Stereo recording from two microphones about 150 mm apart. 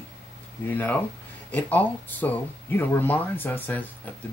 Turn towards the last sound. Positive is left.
turn(degrees=10)  # may be behind; listen again after turning